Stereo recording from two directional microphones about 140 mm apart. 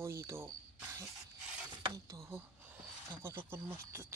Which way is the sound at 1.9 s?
25° right (ahead or behind).